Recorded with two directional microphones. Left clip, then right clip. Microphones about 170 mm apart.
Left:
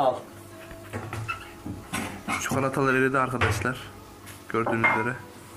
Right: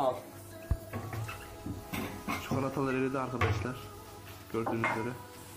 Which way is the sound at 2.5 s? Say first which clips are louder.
Left 9 dB; 5° left (ahead or behind).